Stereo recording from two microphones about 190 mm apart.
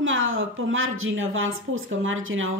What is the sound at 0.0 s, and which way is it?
A woman's voice, 90° right.